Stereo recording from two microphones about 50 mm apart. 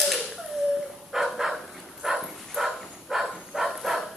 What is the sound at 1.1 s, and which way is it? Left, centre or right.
Dog, centre.